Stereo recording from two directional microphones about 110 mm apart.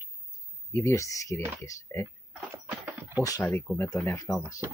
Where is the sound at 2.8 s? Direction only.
15° right (ahead or behind).